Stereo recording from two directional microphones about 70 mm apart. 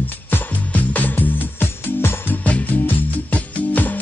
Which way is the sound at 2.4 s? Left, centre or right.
Left.